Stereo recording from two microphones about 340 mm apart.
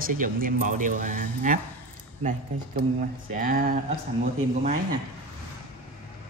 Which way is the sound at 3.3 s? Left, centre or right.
Right.